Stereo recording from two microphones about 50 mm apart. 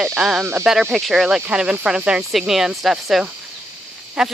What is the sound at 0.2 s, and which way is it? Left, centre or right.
Speech, centre.